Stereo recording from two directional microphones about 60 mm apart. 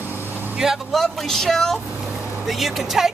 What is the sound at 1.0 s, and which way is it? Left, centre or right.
Speech, centre.